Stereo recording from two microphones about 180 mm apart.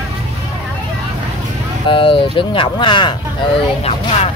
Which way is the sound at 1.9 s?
30° left (ahead or behind).